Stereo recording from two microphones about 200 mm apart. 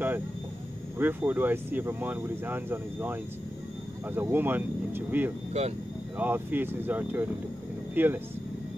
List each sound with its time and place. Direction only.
0.9 s speech: 10° right (ahead or behind)
5.5 s speech: 35° right (ahead or behind)
6.1 s speech: 10° right (ahead or behind)